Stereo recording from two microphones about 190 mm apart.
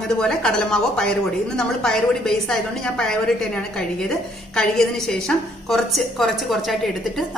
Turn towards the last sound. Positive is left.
turn(degrees=0)  # may be behind; listen again after turning